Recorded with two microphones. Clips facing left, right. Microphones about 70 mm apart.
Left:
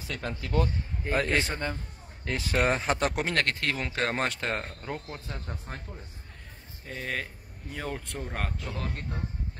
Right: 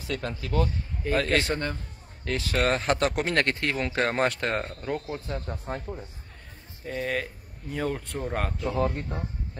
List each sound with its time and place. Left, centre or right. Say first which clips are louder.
0.1 s speech: right 3 dB; centre
0.6 s speech: right 1 dB; left
1.3 s a man's voice: right 3 dB; centre
2.2 s speech: right 2 dB; left
2.5 s speech: right 1 dB; centre
6.9 s speech: right 5 dB; centre